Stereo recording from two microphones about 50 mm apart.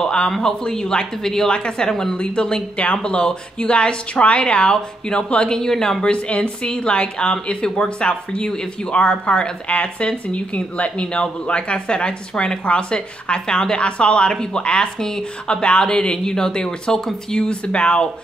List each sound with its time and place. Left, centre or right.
0.0 s a sound: centre
0.4 s a woman's voice: centre
6.1 s speech: left